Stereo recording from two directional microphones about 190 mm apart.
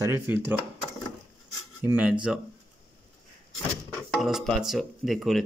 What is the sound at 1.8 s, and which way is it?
Speech, 5° right (ahead or behind).